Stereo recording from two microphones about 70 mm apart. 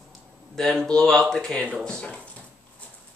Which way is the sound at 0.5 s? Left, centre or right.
Centre.